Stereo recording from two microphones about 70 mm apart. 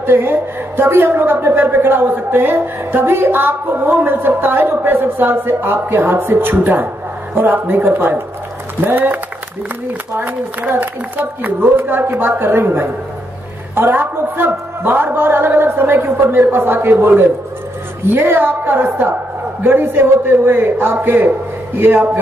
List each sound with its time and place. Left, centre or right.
0.0 s a woman's voice: right